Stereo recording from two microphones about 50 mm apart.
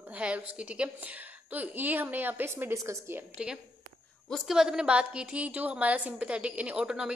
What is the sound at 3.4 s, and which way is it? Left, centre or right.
A woman's voice, centre.